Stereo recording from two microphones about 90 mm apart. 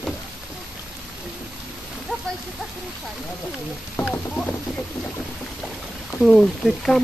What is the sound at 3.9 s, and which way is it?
Speech, 20° left (ahead or behind).